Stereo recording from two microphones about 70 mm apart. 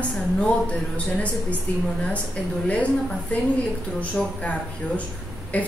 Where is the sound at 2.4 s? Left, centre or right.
Centre.